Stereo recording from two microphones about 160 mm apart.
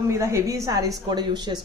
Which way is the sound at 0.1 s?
15° right (ahead or behind).